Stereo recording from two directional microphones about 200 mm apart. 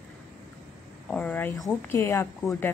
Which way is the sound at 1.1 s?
5° left (ahead or behind).